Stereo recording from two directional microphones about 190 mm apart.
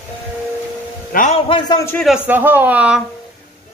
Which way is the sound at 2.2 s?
10° right (ahead or behind).